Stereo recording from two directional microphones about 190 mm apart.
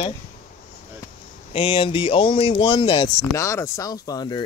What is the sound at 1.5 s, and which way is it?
Speech, 25° left (ahead or behind).